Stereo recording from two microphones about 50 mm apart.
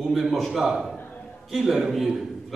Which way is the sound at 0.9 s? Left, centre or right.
Left.